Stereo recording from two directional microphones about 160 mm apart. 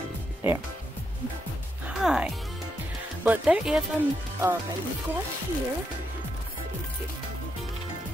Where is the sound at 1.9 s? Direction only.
5° right (ahead or behind).